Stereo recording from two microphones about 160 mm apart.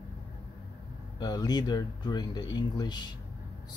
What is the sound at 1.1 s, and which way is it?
Speech, 25° left (ahead or behind).